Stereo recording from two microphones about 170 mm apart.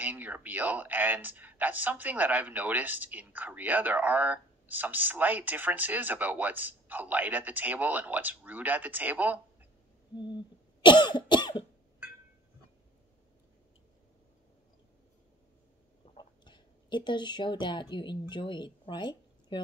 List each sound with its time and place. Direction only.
0.0 s speech: 10° right (ahead or behind)
10.1 s cough: 25° left (ahead or behind)
16.2 s speech: 25° left (ahead or behind)